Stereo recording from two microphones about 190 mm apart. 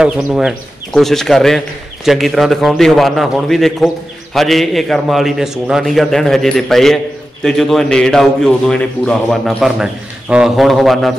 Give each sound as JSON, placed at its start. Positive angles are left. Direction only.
{"t": 0.0, "sound": "a man's voice", "side_deg": -5}